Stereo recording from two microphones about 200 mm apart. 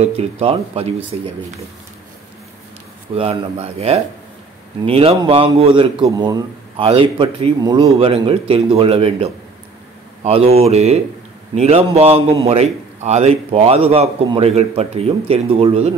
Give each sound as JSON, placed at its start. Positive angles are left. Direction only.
{"t": 0.0, "sound": "a man's voice", "side_deg": -30}
{"t": 3.2, "sound": "a man's voice", "side_deg": -30}